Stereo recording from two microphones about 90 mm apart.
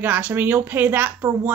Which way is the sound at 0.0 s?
20° right (ahead or behind).